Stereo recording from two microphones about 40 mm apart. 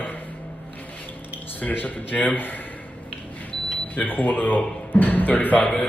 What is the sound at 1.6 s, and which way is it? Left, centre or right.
Speech, left.